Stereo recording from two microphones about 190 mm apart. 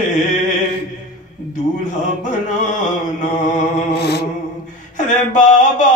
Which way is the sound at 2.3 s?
40° left (ahead or behind).